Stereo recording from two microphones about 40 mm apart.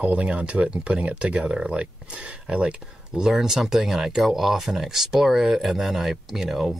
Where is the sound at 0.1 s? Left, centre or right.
Right.